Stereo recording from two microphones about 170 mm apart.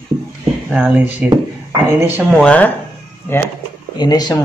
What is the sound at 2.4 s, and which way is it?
Speech, 10° left (ahead or behind).